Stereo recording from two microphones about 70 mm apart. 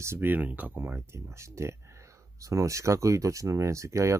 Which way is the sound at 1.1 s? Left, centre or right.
Right.